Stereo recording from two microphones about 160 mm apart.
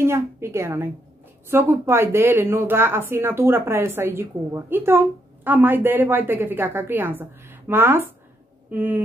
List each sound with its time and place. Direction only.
0.0 s speech: 15° right (ahead or behind)